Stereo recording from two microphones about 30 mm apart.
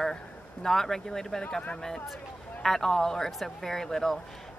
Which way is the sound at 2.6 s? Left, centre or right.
Centre.